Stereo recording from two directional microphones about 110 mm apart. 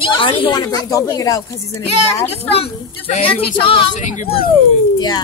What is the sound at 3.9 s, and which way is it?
Speech, 90° left.